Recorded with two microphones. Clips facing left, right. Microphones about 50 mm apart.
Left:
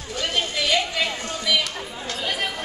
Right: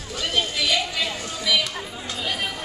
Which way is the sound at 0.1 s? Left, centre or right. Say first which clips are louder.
Even; left.